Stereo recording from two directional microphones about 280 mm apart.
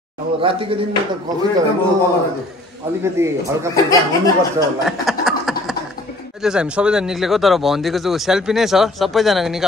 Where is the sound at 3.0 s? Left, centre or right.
Centre.